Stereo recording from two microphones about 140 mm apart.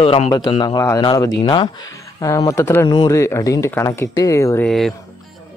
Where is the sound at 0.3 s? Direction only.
30° left (ahead or behind).